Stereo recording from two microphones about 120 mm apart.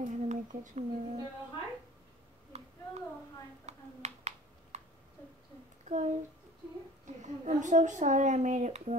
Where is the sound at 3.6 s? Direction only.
70° right (ahead or behind).